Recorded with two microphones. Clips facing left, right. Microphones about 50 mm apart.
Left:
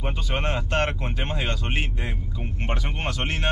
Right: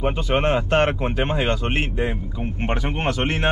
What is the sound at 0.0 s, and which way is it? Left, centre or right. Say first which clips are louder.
Speech: right 8 dB; right.